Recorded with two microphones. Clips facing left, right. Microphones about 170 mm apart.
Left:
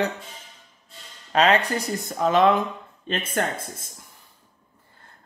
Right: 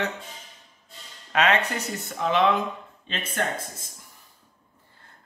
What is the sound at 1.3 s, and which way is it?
Speech, 35° left (ahead or behind).